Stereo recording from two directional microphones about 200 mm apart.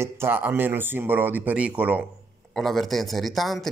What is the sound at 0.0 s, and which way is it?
Speech, 10° right (ahead or behind).